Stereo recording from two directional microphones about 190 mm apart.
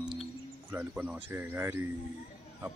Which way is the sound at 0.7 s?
10° right (ahead or behind).